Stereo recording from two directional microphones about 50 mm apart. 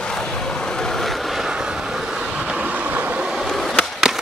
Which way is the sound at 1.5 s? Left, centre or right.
Centre.